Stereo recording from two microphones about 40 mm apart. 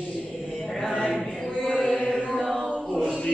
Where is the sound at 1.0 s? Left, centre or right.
Centre.